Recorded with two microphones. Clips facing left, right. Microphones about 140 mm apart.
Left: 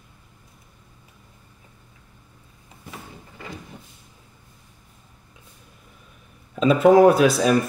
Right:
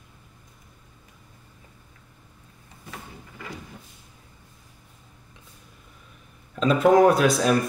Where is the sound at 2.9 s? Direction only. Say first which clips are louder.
Left 1 dB; 25° left (ahead or behind).